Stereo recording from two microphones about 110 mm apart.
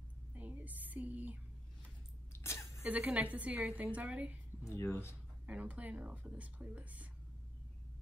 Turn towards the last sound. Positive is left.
turn(degrees=-15)  # may be behind; listen again after turning